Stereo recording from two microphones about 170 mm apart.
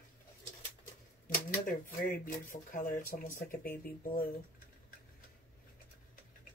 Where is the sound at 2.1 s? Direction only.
55° left (ahead or behind).